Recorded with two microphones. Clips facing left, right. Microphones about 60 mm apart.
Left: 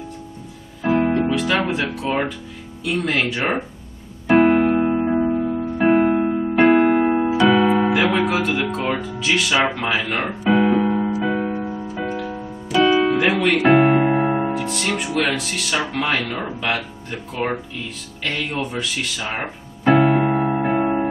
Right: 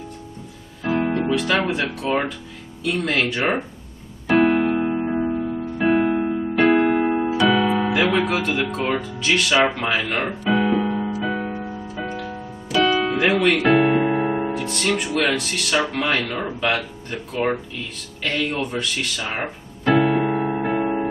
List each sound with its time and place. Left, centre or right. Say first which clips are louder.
0.8 s music: left 3 dB; centre
1.3 s speech: even; centre
4.3 s keyboard: left 3 dB; centre
4.7 s music: left 3 dB; centre
7.9 s speech: left 1 dB; centre
10.4 s piano: left 4 dB; centre
11.9 s music: left 3 dB; centre
13.8 s keyboard: left 2 dB; centre
14.5 s speech: even; centre
20.2 s music: left 2 dB; centre